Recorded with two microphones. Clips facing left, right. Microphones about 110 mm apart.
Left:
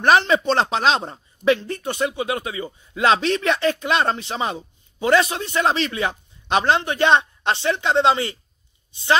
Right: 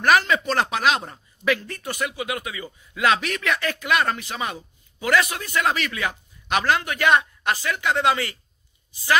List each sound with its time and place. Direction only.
0.0 s speech: 25° left (ahead or behind)